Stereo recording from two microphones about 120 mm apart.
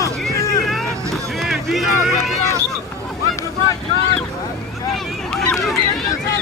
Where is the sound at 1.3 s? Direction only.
Centre (ahead or behind).